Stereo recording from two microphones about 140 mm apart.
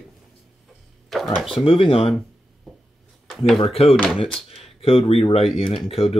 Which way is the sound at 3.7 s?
45° left (ahead or behind).